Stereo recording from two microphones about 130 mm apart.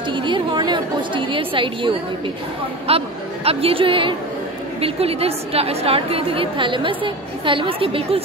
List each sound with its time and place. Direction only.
0.1 s a woman's voice: 40° right (ahead or behind)